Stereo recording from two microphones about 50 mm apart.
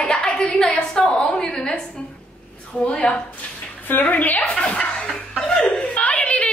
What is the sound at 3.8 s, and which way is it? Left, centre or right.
Speech, left.